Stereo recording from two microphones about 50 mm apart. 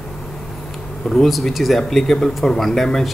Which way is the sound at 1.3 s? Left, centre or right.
Centre.